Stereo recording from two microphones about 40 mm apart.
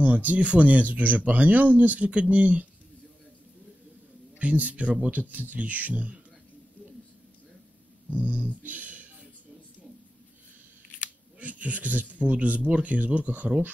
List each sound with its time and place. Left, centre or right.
0.0 s speech: right
4.4 s speech: right
8.1 s a sound: right
11.3 s speech: right